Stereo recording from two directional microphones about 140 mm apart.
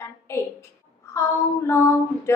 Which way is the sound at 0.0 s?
20° left (ahead or behind).